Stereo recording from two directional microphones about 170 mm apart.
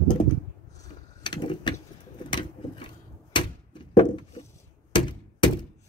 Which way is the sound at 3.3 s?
25° left (ahead or behind).